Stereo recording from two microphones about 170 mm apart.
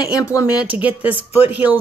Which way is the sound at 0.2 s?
15° left (ahead or behind).